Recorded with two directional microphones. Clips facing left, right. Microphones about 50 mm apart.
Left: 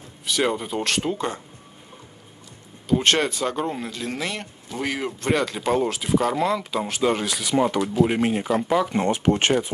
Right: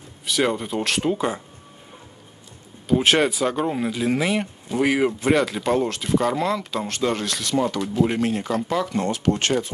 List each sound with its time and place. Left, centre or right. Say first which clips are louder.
0.2 s speech: right 1 dB; centre
2.9 s speech: right 2 dB; centre
7.5 s speech: left 2 dB; left
7.9 s speech: left 1 dB; centre
8.2 s speech: left 1 dB; centre